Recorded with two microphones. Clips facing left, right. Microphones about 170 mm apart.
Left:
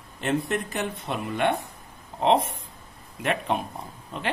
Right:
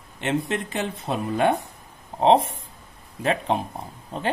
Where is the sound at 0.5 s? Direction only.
30° right (ahead or behind).